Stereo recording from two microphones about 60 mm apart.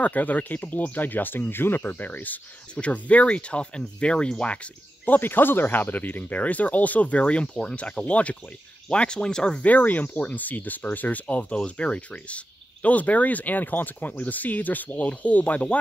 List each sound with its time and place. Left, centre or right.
0.0 s speech: left
5.0 s speech: left